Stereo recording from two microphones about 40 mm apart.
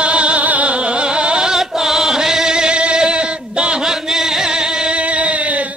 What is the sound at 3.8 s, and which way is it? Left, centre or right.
Chant, centre.